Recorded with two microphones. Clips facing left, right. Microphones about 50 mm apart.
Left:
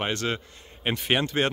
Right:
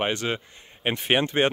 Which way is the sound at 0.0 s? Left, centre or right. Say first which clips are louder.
Right 2 dB; centre.